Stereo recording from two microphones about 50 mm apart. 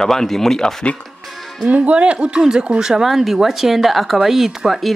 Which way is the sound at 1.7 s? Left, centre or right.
Right.